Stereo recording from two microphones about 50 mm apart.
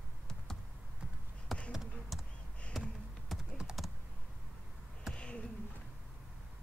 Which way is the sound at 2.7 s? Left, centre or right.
Centre.